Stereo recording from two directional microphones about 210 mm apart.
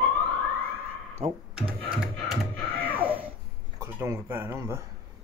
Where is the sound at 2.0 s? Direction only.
Centre (ahead or behind).